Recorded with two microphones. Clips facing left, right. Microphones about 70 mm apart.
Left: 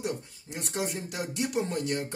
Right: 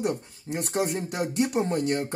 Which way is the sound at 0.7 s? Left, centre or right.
Right.